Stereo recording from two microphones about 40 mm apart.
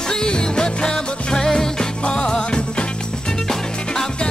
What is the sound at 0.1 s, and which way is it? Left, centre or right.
Music, centre.